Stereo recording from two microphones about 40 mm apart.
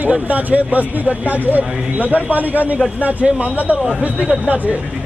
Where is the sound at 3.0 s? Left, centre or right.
Right.